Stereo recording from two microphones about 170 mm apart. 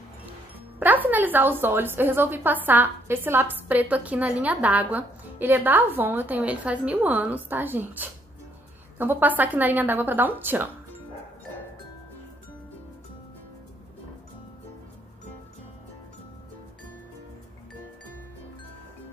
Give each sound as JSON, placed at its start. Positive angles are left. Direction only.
{"t": 0.7, "sound": "a woman's voice", "side_deg": -10}